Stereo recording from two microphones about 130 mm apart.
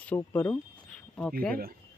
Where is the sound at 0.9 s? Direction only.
5° left (ahead or behind).